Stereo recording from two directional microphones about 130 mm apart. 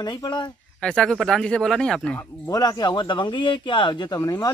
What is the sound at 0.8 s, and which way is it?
Speech, 5° left (ahead or behind).